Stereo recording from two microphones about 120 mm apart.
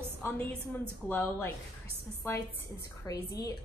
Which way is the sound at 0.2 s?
15° left (ahead or behind).